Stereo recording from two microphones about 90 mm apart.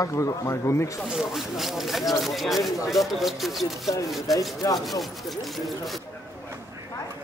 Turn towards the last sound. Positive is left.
turn(degrees=0)  # may be behind; listen again after turning